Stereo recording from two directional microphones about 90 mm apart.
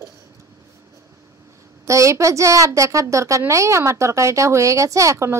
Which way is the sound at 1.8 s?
35° right (ahead or behind).